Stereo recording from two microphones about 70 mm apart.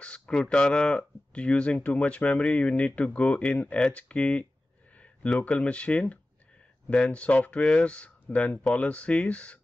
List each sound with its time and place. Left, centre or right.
0.0 s speech: centre
4.9 s a sound: centre
5.4 s speech: centre